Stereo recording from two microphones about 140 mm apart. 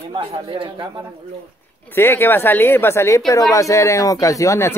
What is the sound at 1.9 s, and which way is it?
A woman's voice, 15° left (ahead or behind).